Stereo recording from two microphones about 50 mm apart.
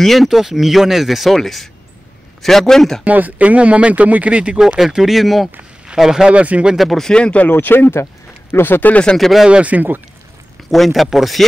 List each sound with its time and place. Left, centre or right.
0.0 s a man's voice: centre
3.0 s speech: right
4.6 s a man's voice: centre
6.3 s speech: right
6.8 s speech: centre
7.1 s speech: left
7.4 s speech: left
9.5 s speech: right
10.7 s speech: centre